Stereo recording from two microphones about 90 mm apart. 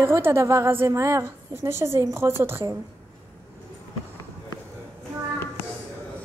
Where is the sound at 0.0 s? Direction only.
25° right (ahead or behind).